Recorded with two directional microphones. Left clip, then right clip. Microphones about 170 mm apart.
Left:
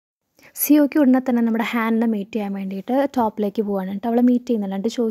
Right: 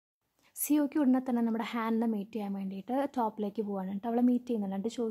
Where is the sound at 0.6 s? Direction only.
30° left (ahead or behind).